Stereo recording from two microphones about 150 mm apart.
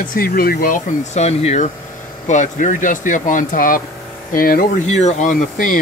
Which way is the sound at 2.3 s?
55° left (ahead or behind).